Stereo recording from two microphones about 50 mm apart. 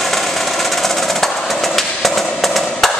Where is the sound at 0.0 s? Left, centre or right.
Centre.